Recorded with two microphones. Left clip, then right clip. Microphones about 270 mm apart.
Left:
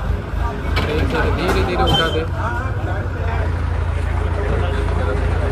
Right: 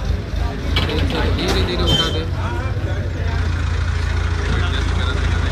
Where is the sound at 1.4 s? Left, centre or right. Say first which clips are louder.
Left 2 dB; left.